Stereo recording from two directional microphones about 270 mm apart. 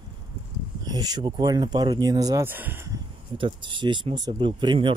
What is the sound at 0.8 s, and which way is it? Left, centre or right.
Speech, centre.